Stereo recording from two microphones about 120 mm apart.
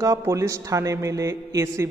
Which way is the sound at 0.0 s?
25° right (ahead or behind).